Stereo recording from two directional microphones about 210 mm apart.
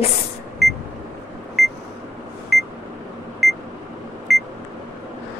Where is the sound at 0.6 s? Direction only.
Centre (ahead or behind).